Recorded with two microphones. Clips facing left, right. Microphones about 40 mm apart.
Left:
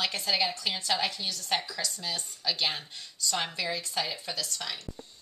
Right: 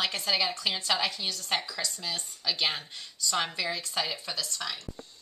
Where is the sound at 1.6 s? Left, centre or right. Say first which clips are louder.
Even; centre.